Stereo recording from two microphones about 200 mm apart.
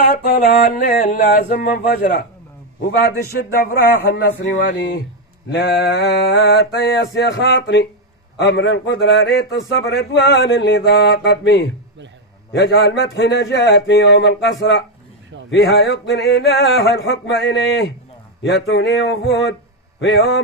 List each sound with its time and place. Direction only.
0.1 s a man's voice: 45° left (ahead or behind)